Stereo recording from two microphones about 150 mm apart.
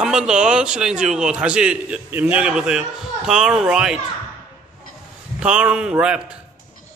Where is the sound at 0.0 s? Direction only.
5° right (ahead or behind).